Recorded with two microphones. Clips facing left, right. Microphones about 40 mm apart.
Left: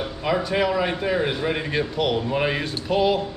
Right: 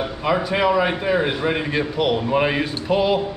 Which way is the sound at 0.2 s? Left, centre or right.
Centre.